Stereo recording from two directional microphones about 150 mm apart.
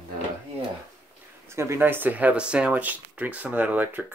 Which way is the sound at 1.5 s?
15° right (ahead or behind).